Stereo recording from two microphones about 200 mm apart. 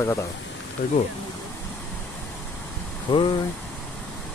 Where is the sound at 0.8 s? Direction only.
40° left (ahead or behind).